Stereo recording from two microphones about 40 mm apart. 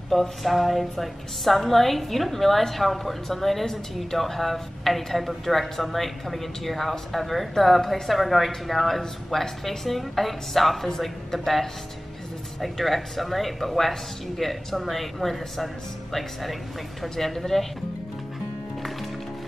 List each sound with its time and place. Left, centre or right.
0.1 s a woman's voice: centre